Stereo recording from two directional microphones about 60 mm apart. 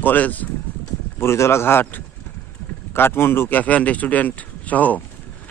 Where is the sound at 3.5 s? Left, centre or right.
Left.